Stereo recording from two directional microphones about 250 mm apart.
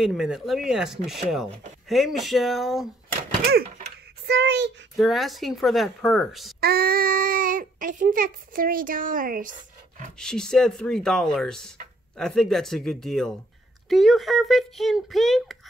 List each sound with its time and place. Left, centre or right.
0.0 s speech: centre
4.3 s a child's voice: right
4.9 s speech: centre
6.6 s a child's voice: right
10.1 s speech: centre